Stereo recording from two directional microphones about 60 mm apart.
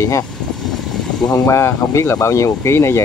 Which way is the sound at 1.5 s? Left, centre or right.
Left.